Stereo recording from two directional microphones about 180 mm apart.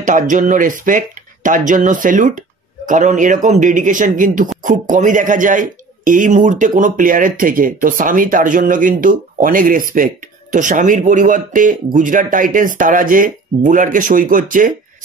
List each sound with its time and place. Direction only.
0.0 s a man's voice: 45° right (ahead or behind)